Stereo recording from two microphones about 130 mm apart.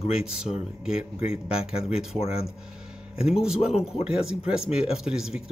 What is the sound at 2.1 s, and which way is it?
Speech, 50° left (ahead or behind).